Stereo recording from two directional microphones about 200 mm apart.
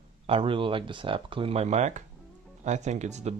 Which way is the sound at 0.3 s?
25° right (ahead or behind).